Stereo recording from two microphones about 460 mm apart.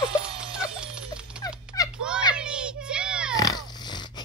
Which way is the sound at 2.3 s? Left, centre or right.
Centre.